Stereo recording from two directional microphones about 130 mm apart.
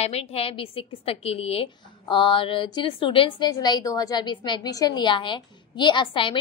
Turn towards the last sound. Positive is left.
turn(degrees=40)  # may be behind; listen again after turning